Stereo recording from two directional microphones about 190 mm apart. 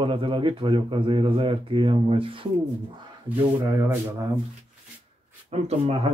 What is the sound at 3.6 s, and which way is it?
Speech, 15° right (ahead or behind).